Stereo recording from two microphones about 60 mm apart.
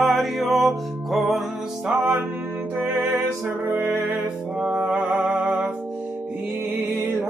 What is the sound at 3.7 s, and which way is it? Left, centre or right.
Music, right.